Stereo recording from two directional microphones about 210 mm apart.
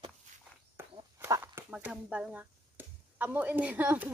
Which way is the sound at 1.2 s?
15° right (ahead or behind).